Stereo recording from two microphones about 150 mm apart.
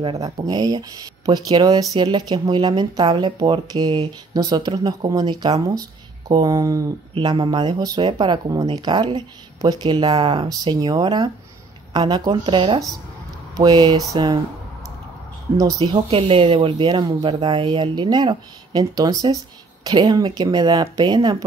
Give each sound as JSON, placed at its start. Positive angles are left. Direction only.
{"t": 0.2, "sound": "speech", "side_deg": -25}
{"t": 15.5, "sound": "speech", "side_deg": -30}